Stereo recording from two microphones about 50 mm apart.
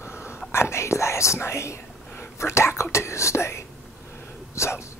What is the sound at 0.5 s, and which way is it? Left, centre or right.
Speech, left.